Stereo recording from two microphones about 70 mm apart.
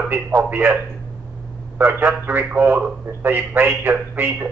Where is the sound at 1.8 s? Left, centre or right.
Right.